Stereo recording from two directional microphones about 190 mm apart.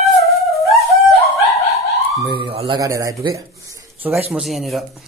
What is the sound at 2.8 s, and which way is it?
Speech, 15° right (ahead or behind).